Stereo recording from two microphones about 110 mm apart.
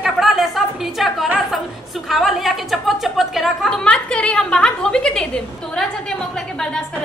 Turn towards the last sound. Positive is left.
turn(degrees=5)  # may be behind; listen again after turning